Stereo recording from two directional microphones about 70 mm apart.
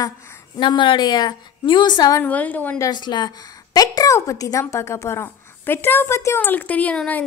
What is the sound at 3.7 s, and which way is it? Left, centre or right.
A woman's voice, left.